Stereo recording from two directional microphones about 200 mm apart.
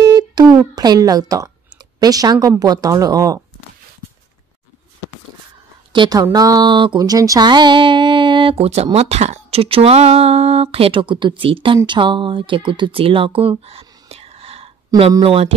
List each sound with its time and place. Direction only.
0.0 s busy signal: 20° right (ahead or behind)
2.0 s a woman's voice: 20° right (ahead or behind)
5.9 s speech: 20° right (ahead or behind)